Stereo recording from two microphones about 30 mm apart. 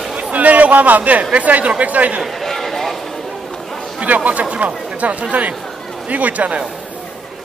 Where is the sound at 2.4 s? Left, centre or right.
Centre.